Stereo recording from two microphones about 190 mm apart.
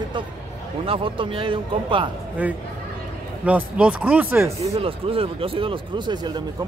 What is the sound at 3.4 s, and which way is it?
Speech, 5° right (ahead or behind).